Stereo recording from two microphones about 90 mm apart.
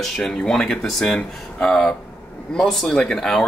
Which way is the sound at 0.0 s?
5° left (ahead or behind).